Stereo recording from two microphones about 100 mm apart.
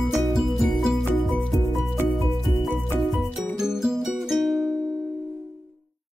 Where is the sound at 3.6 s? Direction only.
5° right (ahead or behind).